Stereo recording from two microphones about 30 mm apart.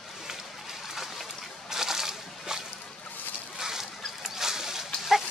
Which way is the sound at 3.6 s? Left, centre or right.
Centre.